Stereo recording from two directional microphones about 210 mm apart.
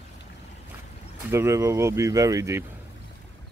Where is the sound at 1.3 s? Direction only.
15° right (ahead or behind).